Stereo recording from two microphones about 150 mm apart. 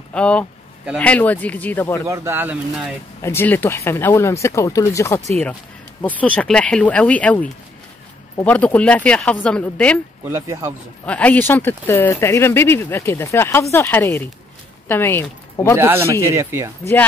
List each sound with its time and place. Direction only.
0.1 s speech: 10° left (ahead or behind)
2.0 s speech: 20° right (ahead or behind)
3.2 s speech: 15° left (ahead or behind)
10.3 s a man's voice: 20° right (ahead or behind)
11.1 s speech: 10° left (ahead or behind)
15.8 s speech: 15° right (ahead or behind)